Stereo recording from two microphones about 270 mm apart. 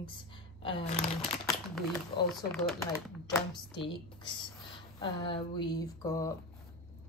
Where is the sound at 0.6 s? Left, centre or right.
Centre.